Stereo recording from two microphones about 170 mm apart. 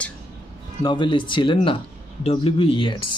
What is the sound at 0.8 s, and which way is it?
Speech, 25° left (ahead or behind).